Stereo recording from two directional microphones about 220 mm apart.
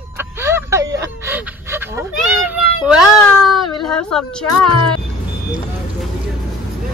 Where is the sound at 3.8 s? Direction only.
5° left (ahead or behind).